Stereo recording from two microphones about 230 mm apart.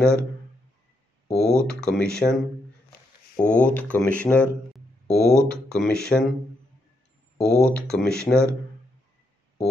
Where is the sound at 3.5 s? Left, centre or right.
Centre.